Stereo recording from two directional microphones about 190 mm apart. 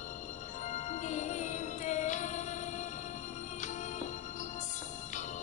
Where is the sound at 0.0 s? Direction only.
40° left (ahead or behind).